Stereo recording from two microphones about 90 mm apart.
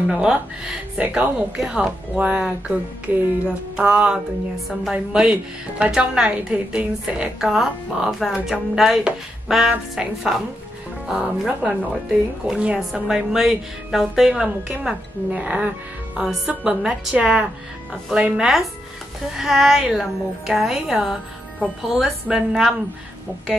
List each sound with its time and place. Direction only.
0.1 s a woman's voice: 5° right (ahead or behind)